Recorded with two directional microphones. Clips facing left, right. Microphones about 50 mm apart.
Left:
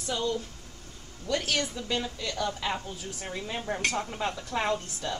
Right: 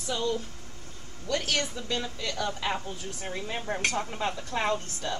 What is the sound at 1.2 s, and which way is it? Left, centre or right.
Speech, centre.